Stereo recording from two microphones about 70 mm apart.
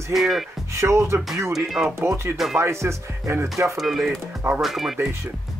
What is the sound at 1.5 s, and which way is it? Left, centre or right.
Speech, centre.